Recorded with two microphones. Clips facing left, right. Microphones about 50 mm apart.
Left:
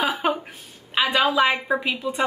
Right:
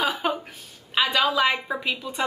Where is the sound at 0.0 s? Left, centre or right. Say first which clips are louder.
Left 2 dB; centre.